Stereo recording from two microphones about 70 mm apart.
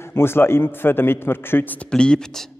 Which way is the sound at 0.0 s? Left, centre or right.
Left.